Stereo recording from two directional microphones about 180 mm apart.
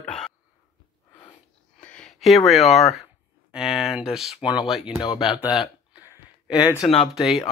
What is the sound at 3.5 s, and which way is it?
Speech, 5° right (ahead or behind).